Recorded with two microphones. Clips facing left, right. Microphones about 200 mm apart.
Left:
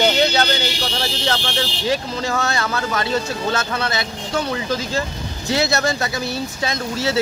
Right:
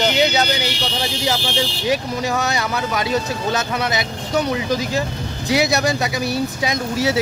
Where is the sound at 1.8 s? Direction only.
15° right (ahead or behind).